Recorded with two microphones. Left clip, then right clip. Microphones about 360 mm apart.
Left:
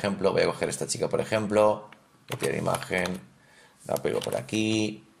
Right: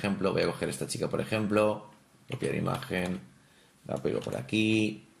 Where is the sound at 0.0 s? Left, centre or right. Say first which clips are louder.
Left 5 dB; centre.